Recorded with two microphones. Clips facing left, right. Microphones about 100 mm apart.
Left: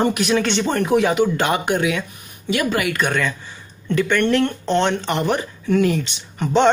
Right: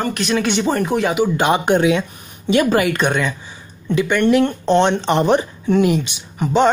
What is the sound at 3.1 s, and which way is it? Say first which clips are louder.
Speech: right 2 dB; 15° right (ahead or behind).